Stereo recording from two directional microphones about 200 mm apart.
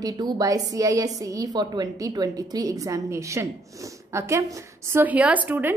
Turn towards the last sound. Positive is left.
turn(degrees=-10)  # may be behind; listen again after turning